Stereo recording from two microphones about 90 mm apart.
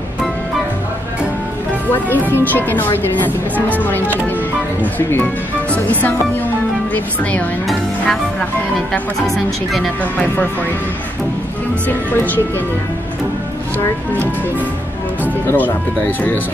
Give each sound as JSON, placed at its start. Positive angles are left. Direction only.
{"t": 2.0, "sound": "speech", "side_deg": 20}
{"t": 8.0, "sound": "speech", "side_deg": 5}
{"t": 15.4, "sound": "speech", "side_deg": 20}